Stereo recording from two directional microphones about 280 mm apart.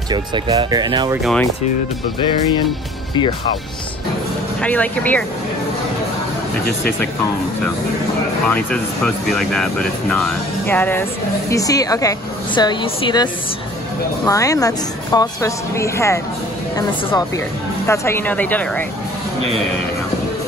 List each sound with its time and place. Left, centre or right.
0.1 s speech: centre
1.2 s speech: centre
4.6 s speech: centre
8.5 s speech: centre
17.8 s speech: centre